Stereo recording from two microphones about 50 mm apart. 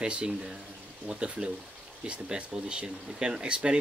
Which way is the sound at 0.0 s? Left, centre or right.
Centre.